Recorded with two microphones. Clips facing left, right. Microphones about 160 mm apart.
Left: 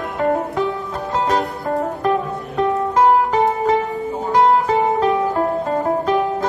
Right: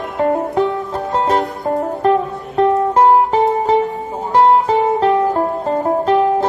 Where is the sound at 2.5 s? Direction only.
30° right (ahead or behind).